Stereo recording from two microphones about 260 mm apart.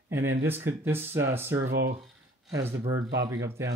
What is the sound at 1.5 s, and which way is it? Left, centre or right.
Speech, right.